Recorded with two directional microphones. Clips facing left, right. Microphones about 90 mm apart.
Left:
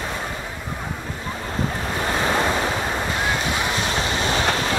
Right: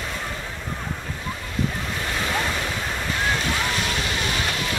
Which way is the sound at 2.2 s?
30° left (ahead or behind).